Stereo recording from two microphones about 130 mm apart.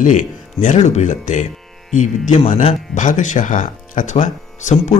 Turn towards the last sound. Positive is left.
turn(degrees=70)  # may be behind; listen again after turning